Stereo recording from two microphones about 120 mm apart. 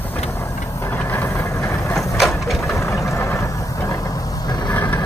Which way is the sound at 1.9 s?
Centre (ahead or behind).